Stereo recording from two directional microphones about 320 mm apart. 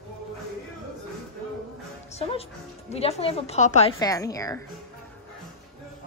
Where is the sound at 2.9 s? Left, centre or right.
Centre.